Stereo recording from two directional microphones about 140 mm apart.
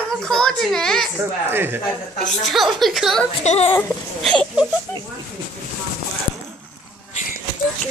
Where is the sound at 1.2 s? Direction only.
15° right (ahead or behind).